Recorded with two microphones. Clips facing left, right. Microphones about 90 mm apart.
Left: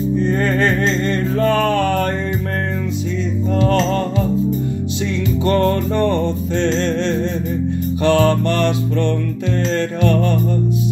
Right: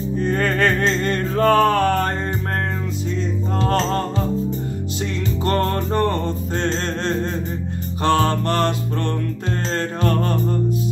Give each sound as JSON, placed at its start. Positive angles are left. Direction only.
{"t": 0.2, "sound": "music", "side_deg": -50}
{"t": 3.5, "sound": "music", "side_deg": -35}
{"t": 5.4, "sound": "music", "side_deg": -40}